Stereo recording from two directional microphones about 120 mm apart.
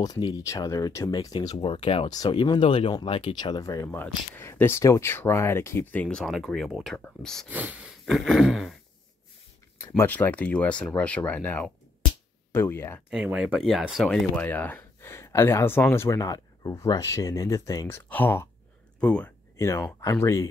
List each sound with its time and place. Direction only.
0.0 s speech: 35° left (ahead or behind)
1.6 s speech: 45° left (ahead or behind)
2.0 s speech: 35° left (ahead or behind)
3.9 s speech: 20° left (ahead or behind)
7.4 s speech: 10° right (ahead or behind)
8.0 s speech: centre (ahead or behind)
9.9 s speech: 15° left (ahead or behind)
13.1 s speech: 10° right (ahead or behind)
14.3 s speech: 15° left (ahead or behind)
19.5 s speech: 25° left (ahead or behind)